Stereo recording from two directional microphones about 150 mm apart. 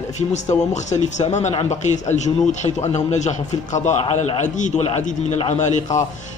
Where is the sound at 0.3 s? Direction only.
50° left (ahead or behind).